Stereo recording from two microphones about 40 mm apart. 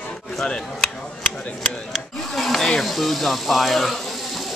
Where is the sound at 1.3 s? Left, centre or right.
Left.